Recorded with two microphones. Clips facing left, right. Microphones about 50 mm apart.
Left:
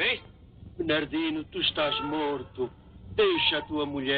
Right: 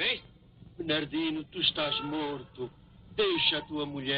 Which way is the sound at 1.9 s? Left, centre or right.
Centre.